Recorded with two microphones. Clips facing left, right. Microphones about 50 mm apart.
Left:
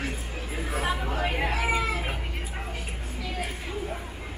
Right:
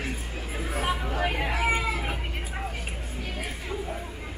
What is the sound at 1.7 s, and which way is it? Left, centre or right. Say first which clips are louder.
Chicken: even; right.